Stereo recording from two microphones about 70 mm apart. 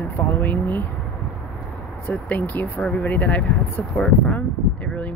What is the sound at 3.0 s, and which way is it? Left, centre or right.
Speech, left.